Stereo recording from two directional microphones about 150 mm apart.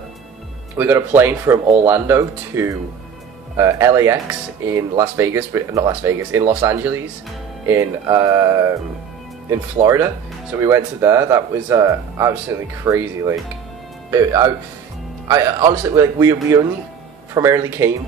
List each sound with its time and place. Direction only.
0.7 s speech: 15° right (ahead or behind)